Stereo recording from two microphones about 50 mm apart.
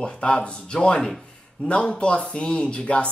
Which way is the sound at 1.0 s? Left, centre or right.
Centre.